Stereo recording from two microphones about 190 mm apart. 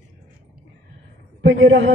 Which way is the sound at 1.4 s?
70° right (ahead or behind).